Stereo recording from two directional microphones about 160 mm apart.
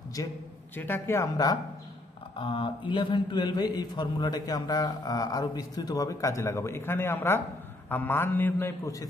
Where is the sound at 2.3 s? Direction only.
30° left (ahead or behind).